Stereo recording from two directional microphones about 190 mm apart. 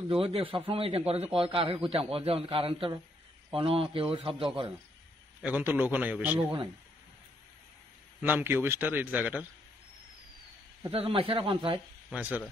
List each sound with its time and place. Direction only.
0.1 s a man's voice: 30° right (ahead or behind)
5.4 s a man's voice: 10° right (ahead or behind)
8.2 s a man's voice: 10° right (ahead or behind)
10.9 s a man's voice: 30° right (ahead or behind)
12.1 s a man's voice: 5° right (ahead or behind)